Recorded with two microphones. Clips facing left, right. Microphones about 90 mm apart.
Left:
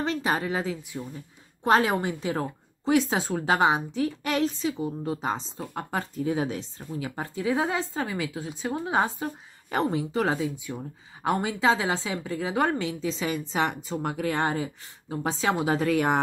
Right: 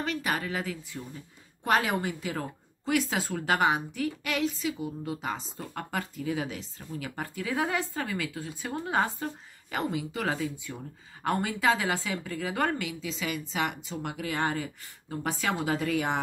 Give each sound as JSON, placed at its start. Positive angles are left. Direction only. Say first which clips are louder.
{"t": 0.0, "sound": "a woman's voice", "louder": "left 4 dB", "side_deg": 30}
{"t": 6.1, "sound": "a woman's voice", "louder": "left 8 dB", "side_deg": 35}
{"t": 6.9, "sound": "a woman's voice", "louder": "left 3 dB", "side_deg": 20}
{"t": 9.7, "sound": "a woman's voice", "louder": "left 5 dB", "side_deg": 35}
{"t": 12.8, "sound": "a woman's voice", "louder": "left 5 dB", "side_deg": 35}
{"t": 14.4, "sound": "a woman's voice", "louder": "left 3 dB", "side_deg": 20}
{"t": 15.9, "sound": "speech", "louder": "left 7 dB", "side_deg": 50}